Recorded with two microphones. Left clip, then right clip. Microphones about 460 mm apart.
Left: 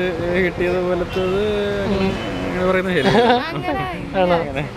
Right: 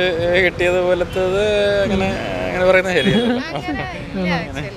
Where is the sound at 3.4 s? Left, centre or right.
Right.